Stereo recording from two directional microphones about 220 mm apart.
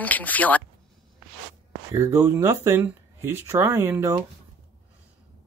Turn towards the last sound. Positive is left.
turn(degrees=-10)  # may be behind; listen again after turning